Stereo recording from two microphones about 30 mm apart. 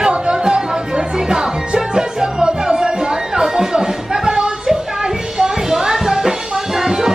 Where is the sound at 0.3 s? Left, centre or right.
Right.